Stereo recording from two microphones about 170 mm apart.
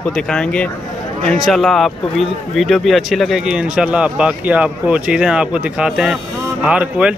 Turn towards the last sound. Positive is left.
turn(degrees=-5)  # may be behind; listen again after turning